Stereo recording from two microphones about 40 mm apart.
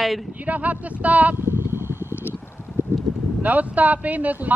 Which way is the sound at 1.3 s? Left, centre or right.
Right.